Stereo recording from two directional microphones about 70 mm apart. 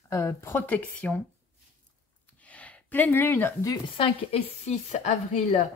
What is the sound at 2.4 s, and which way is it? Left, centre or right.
Gasp, centre.